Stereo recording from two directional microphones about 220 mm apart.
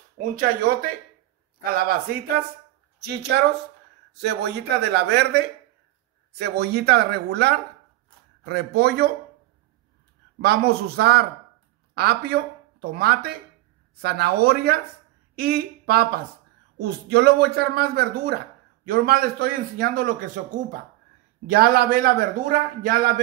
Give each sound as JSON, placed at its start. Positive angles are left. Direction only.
{"t": 0.2, "sound": "a man's voice", "side_deg": -40}
{"t": 3.0, "sound": "speech", "side_deg": -50}
{"t": 10.4, "sound": "a man's voice", "side_deg": -45}